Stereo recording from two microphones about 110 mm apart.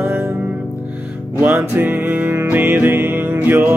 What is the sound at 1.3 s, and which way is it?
Music, 20° right (ahead or behind).